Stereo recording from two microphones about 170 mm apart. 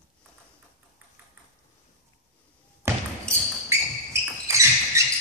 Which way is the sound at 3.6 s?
15° right (ahead or behind).